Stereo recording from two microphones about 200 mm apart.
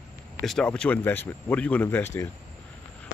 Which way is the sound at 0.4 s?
Centre (ahead or behind).